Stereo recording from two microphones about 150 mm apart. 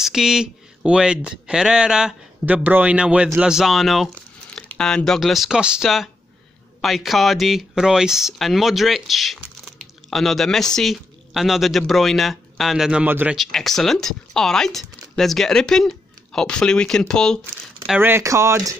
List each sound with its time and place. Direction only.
0.0 s speech: 5° right (ahead or behind)
13.4 s speech: centre (ahead or behind)
17.8 s speech: 10° right (ahead or behind)